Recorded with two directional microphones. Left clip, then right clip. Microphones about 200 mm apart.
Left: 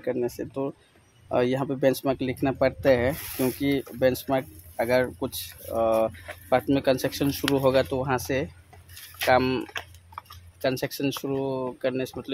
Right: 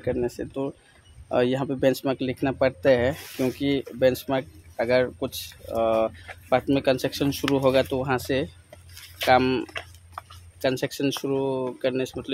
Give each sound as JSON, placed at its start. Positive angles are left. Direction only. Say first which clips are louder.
{"t": 0.0, "sound": "speech", "louder": "right 1 dB", "side_deg": -5}
{"t": 10.2, "sound": "a sound", "louder": "right 2 dB", "side_deg": -45}
{"t": 10.6, "sound": "speech", "louder": "right 2 dB", "side_deg": -10}